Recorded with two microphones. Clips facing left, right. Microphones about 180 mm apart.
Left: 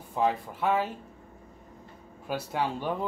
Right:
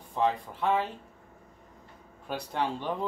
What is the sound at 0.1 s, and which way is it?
Speech, 5° left (ahead or behind).